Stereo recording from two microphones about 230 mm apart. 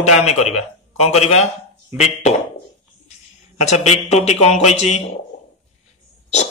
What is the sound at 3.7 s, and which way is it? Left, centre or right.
A man's voice, left.